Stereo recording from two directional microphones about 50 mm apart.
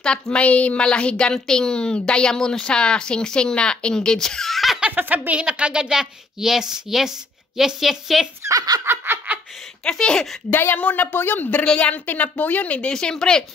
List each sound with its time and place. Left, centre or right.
0.0 s a woman's voice: centre
4.9 s speech: right
5.3 s a woman's voice: right
8.5 s speech: right
8.8 s giggle: right
9.8 s speech: centre
10.5 s speech: left
11.6 s a woman's voice: left
12.9 s speech: centre